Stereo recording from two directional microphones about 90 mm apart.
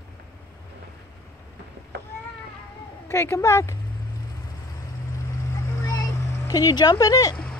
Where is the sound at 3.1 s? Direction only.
30° left (ahead or behind).